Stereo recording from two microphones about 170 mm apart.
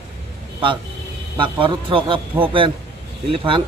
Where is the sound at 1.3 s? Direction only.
30° right (ahead or behind).